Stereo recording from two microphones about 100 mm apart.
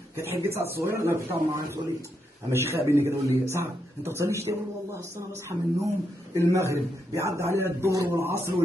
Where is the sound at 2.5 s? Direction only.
25° right (ahead or behind).